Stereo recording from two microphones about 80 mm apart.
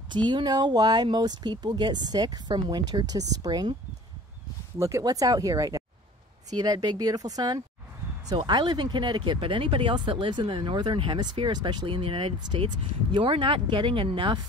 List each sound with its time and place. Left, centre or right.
0.1 s speech: right
4.7 s speech: right
8.3 s speech: right